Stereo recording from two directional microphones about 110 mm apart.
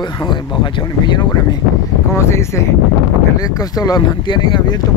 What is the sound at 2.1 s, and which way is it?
Speech, 25° left (ahead or behind).